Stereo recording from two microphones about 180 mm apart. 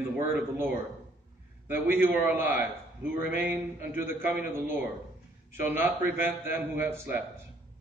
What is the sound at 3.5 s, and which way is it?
A man's voice, 10° right (ahead or behind).